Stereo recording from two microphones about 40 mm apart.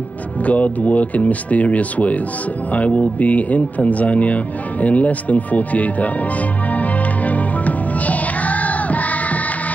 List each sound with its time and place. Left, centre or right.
0.5 s speech: left
6.7 s music: left